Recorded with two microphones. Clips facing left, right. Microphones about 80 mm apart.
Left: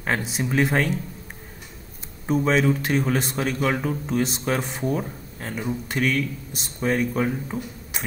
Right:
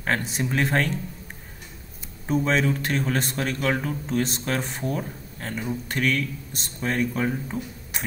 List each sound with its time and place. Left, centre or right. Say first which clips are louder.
0.0 s speech: even; centre
2.2 s speech: left 2 dB; centre